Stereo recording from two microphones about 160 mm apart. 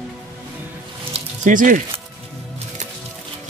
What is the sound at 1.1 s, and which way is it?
Music, 55° right (ahead or behind).